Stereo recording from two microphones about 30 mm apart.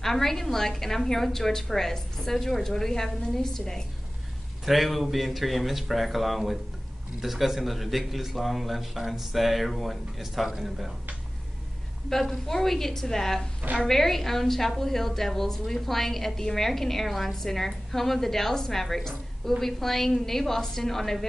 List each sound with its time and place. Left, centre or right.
0.0 s a woman's voice: centre
4.6 s speech: centre
12.1 s a woman's voice: centre